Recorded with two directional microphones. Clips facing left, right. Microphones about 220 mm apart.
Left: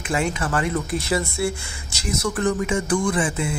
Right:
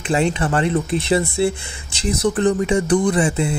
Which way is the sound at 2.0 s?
35° right (ahead or behind).